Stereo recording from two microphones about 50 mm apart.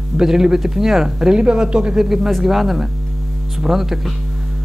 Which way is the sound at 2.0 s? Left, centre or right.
Centre.